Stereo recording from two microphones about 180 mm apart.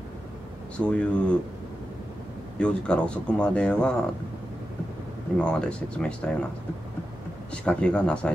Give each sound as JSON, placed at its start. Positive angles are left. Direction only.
{"t": 0.7, "sound": "speech", "side_deg": 5}
{"t": 2.6, "sound": "speech", "side_deg": 5}
{"t": 5.4, "sound": "speech", "side_deg": 5}
{"t": 7.5, "sound": "speech", "side_deg": 5}